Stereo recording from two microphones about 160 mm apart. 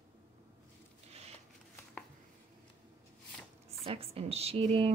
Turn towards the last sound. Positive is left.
turn(degrees=-35)  # may be behind; listen again after turning